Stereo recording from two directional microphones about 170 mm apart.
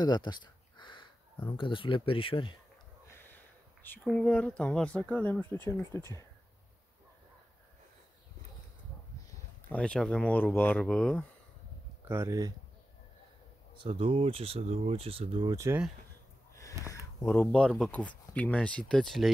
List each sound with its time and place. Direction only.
0.0 s speech: 25° left (ahead or behind)
3.8 s speech: 10° left (ahead or behind)
9.3 s speech: 10° left (ahead or behind)
12.0 s speech: 15° right (ahead or behind)
13.7 s speech: 30° right (ahead or behind)
17.4 s speech: 5° left (ahead or behind)